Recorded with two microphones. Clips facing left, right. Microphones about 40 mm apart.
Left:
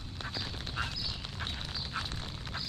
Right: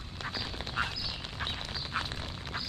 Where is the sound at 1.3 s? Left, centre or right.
Right.